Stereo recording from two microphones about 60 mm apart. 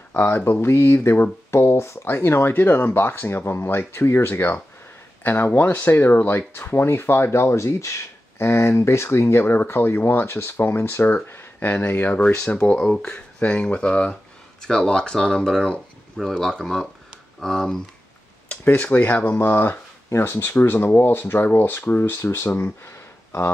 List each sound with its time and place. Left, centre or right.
0.1 s speech: left
11.2 s a sound: left
11.9 s speech: left
12.7 s speech: centre
18.6 s speech: left
22.8 s a sound: left